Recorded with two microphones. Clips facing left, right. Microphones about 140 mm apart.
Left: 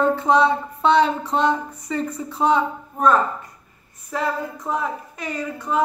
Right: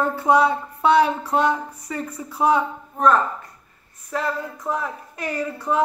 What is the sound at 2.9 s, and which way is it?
Speech, 5° left (ahead or behind).